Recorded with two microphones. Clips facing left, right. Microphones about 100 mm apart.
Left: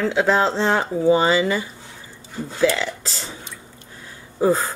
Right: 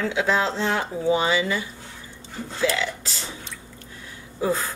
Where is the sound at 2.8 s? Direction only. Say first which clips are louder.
Left 1 dB; 40° left (ahead or behind).